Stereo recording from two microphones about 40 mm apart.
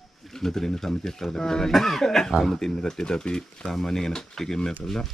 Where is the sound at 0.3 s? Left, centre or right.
Centre.